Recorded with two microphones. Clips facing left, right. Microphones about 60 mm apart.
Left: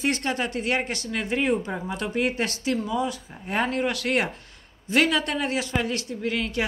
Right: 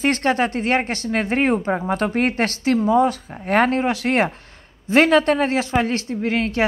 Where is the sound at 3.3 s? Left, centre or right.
Right.